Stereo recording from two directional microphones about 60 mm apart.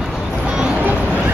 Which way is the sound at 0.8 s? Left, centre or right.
Right.